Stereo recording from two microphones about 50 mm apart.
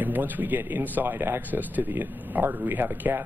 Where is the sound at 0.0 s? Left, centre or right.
Right.